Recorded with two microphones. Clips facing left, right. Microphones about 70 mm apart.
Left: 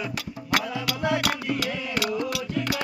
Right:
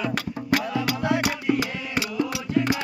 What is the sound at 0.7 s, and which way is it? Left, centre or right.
Music, right.